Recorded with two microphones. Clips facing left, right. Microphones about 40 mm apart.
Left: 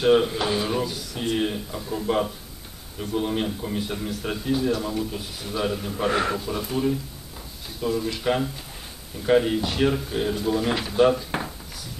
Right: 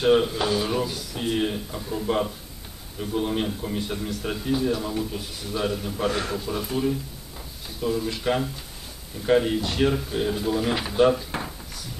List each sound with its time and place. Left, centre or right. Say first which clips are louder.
0.0 s speech: left 1 dB; centre
6.0 s speech: left 3 dB; centre
6.4 s speech: left 1 dB; centre